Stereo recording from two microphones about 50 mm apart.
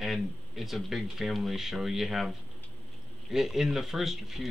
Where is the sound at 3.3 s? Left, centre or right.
Centre.